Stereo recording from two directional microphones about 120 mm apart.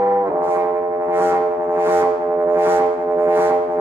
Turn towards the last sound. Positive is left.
turn(degrees=-20)  # may be behind; listen again after turning